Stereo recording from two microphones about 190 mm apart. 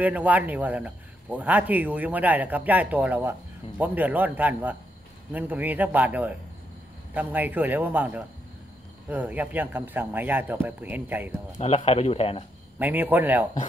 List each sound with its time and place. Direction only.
0.0 s a man's voice: 10° right (ahead or behind)
11.5 s speech: 35° left (ahead or behind)
12.7 s a man's voice: 10° right (ahead or behind)